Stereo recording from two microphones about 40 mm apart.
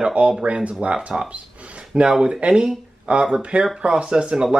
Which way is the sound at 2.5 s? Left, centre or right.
Right.